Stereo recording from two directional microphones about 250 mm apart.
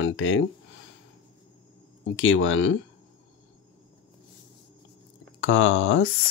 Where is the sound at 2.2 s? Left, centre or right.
Left.